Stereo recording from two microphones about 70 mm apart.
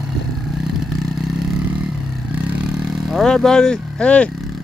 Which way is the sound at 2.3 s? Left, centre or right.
Centre.